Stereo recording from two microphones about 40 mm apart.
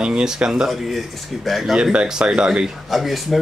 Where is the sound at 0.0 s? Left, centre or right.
Right.